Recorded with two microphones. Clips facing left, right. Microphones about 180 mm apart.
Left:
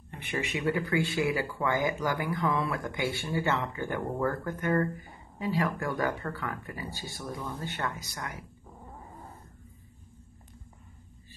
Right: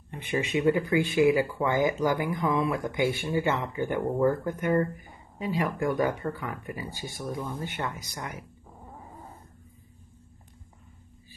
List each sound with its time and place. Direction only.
0.1 s speech: 20° right (ahead or behind)